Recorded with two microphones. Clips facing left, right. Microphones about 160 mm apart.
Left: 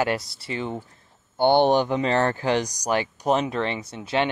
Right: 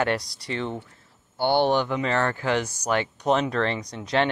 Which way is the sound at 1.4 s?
20° left (ahead or behind).